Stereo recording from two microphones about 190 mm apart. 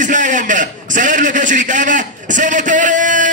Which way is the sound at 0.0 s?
40° right (ahead or behind).